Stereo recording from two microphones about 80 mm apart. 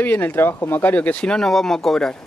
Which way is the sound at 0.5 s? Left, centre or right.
Left.